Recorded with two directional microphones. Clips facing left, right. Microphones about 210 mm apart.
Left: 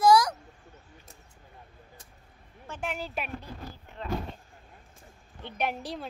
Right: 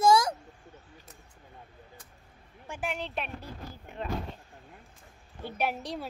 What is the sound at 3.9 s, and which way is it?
Speech, 15° right (ahead or behind).